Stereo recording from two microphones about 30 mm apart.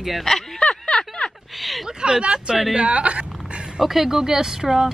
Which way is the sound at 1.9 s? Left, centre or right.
Right.